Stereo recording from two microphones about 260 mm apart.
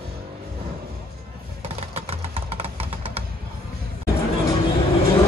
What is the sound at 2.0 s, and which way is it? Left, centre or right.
Music, right.